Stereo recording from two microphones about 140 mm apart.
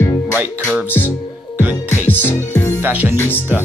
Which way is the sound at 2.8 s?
15° right (ahead or behind).